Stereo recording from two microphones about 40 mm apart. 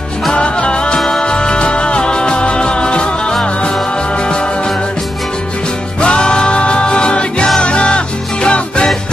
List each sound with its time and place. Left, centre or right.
0.3 s music: left
5.9 s music: left